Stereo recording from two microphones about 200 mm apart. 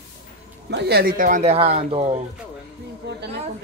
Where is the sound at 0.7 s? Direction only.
50° right (ahead or behind); by 2.0 s 30° right (ahead or behind).